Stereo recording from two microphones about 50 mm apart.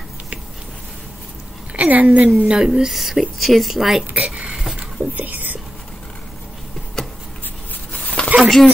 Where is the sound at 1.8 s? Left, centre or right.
Right.